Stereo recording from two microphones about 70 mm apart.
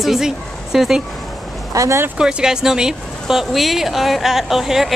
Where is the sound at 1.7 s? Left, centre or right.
Right.